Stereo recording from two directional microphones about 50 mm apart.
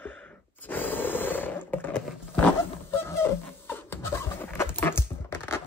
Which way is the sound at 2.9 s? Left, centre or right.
Left.